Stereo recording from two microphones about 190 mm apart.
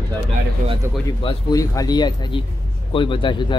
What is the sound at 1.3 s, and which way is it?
Speech, 20° left (ahead or behind).